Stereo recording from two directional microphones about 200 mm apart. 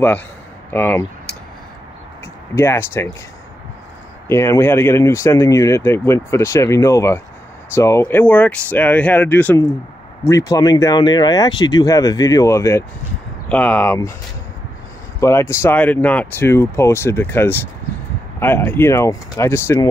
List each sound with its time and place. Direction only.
0.7 s speech: 10° left (ahead or behind)
2.5 s speech: 15° left (ahead or behind)
4.3 s speech: 15° left (ahead or behind)
15.1 s speech: 15° left (ahead or behind)